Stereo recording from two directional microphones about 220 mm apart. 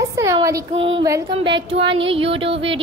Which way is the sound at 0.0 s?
15° right (ahead or behind).